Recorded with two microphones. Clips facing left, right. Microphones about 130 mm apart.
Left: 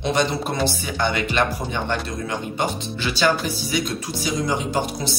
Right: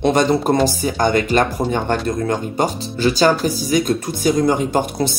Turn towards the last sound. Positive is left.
turn(degrees=-50)  # may be behind; listen again after turning